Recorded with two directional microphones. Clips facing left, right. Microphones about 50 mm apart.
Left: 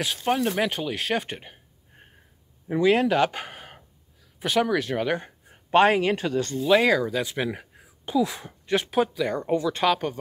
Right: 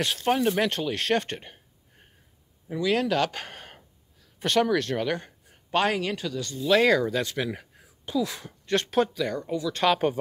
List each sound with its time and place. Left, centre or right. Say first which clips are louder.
0.0 s speech: right 1 dB; centre
2.7 s speech: left 4 dB; left
6.7 s speech: even; centre
9.3 s speech: left 4 dB; left